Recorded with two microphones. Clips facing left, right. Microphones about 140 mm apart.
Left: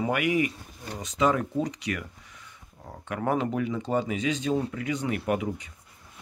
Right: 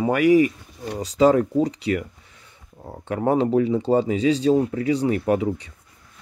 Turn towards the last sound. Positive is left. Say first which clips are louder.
# right 7 dB
turn(degrees=-35)  # may be behind; listen again after turning